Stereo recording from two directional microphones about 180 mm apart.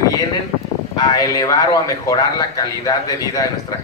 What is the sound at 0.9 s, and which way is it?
Speech, 20° left (ahead or behind).